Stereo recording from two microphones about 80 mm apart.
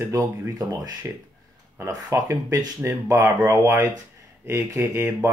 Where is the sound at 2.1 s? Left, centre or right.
Right.